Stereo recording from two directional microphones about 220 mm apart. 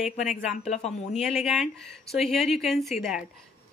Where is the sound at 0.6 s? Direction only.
30° left (ahead or behind).